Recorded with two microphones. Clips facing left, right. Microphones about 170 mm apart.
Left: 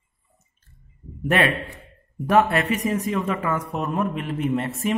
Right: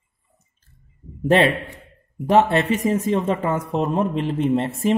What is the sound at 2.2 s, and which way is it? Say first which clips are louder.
A man's voice: right 2 dB; 25° right (ahead or behind).